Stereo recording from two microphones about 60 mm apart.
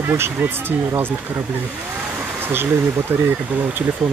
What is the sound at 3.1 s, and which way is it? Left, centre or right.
Speech, right.